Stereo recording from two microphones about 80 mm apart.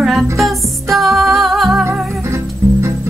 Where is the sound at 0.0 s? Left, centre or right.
Centre.